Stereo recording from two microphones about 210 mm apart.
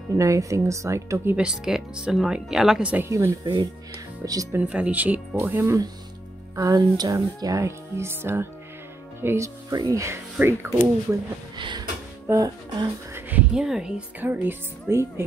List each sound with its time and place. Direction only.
0.2 s speech: 15° right (ahead or behind)